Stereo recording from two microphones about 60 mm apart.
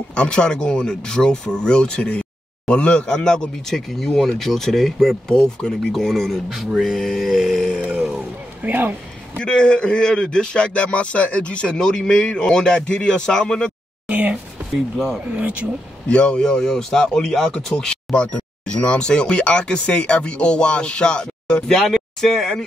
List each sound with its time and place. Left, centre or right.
0.1 s speech: centre
7.9 s a sound: centre
8.6 s speech: right
9.4 s speech: centre
14.0 s speech: right
16.1 s speech: centre